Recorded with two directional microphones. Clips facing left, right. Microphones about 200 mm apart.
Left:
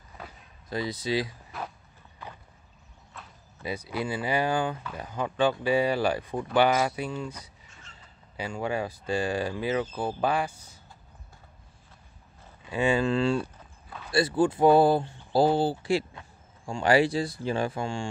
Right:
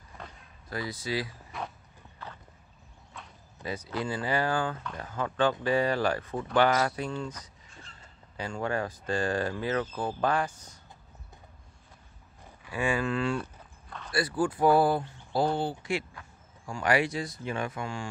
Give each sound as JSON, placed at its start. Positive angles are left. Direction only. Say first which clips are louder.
{"t": 0.7, "sound": "speech", "louder": "left 4 dB", "side_deg": 20}
{"t": 1.5, "sound": "walk", "louder": "even", "side_deg": 0}
{"t": 2.2, "sound": "clip-clop", "louder": "left 1 dB", "side_deg": 15}
{"t": 3.1, "sound": "a sound", "louder": "even", "side_deg": 0}
{"t": 3.6, "sound": "speech", "louder": "left 2 dB", "side_deg": 10}
{"t": 12.6, "sound": "speech", "louder": "left 4 dB", "side_deg": 25}
{"t": 13.4, "sound": "a sound", "louder": "left 4 dB", "side_deg": 5}
{"t": 14.1, "sound": "speech", "louder": "left 5 dB", "side_deg": 25}